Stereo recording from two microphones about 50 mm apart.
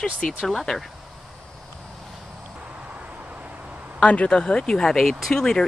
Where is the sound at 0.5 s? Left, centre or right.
Centre.